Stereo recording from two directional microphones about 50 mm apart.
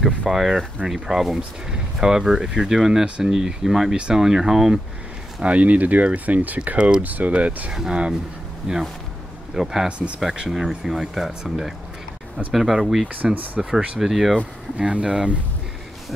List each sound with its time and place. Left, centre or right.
0.3 s speech: centre
5.4 s speech: right
7.7 s speech: centre
9.8 s speech: right
10.5 s speech: centre
13.1 s speech: right
13.9 s speech: centre
14.8 s speech: right